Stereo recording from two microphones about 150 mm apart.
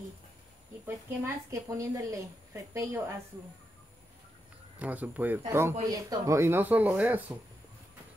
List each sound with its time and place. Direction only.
0.8 s a woman's voice: 20° right (ahead or behind)
4.7 s speech: 10° right (ahead or behind)